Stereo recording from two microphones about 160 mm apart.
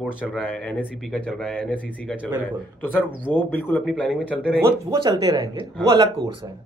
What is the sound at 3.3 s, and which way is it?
Speech, 10° left (ahead or behind).